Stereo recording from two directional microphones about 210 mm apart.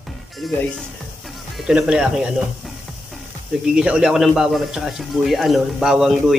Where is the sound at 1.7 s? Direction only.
5° right (ahead or behind).